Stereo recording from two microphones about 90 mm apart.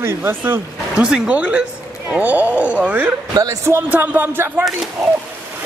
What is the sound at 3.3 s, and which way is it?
Speech, 45° right (ahead or behind).